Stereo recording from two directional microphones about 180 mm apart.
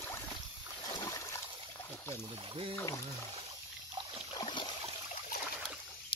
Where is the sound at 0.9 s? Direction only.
20° left (ahead or behind).